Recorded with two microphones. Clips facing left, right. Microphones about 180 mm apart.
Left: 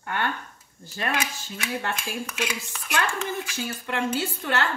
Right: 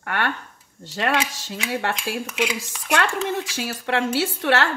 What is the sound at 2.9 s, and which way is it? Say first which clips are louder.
Speech: right 5 dB; 75° right (ahead or behind).